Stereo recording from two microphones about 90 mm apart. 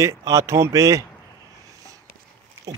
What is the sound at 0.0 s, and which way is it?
A man's voice, 35° right (ahead or behind).